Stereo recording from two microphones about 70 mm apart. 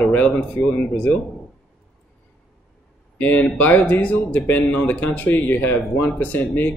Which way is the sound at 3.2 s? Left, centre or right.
Left.